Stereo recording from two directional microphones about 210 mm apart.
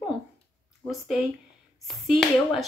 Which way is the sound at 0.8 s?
Centre (ahead or behind).